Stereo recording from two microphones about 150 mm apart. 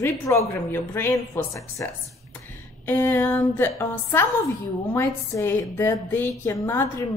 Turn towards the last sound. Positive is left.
turn(degrees=20)  # may be behind; listen again after turning